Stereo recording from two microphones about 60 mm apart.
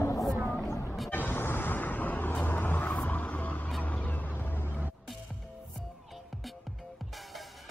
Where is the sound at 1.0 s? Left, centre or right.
Left.